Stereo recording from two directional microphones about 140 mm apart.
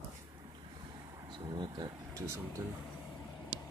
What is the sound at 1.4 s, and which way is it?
Speech, 30° right (ahead or behind).